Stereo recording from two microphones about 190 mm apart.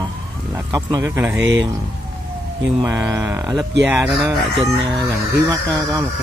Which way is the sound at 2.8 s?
15° right (ahead or behind).